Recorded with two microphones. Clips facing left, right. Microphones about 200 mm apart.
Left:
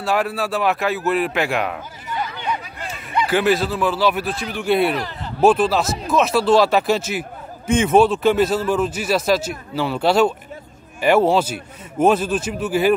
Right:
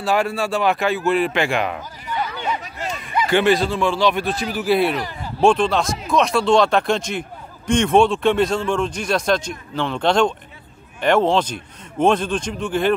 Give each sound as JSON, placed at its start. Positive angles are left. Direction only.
{"t": 0.0, "sound": "speech", "side_deg": 0}
{"t": 3.3, "sound": "a man's voice", "side_deg": 5}